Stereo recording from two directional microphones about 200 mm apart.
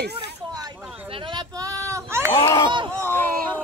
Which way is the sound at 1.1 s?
25° right (ahead or behind).